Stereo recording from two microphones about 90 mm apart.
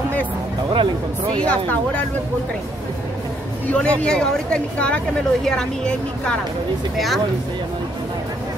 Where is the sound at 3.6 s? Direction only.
10° left (ahead or behind).